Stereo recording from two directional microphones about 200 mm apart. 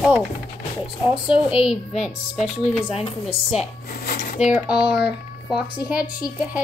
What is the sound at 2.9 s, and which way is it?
Speech, 30° left (ahead or behind).